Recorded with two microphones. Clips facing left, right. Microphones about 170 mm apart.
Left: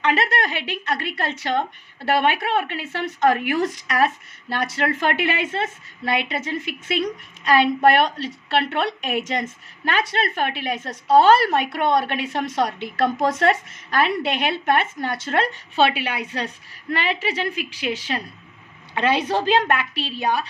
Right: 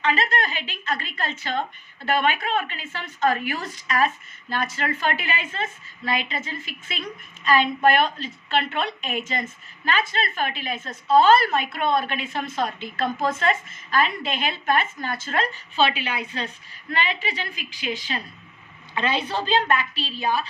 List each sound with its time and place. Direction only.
0.0 s a woman's voice: 70° left (ahead or behind)